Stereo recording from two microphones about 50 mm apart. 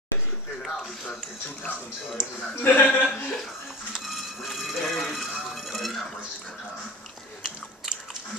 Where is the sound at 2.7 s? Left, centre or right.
Left.